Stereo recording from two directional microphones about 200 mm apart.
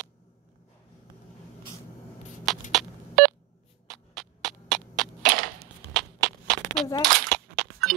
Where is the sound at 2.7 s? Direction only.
Centre (ahead or behind).